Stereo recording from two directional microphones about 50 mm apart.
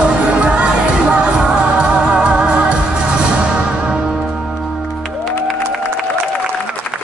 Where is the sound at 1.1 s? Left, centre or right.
Centre.